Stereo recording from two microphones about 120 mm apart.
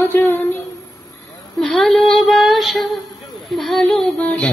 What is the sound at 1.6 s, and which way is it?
Female singing, 5° left (ahead or behind).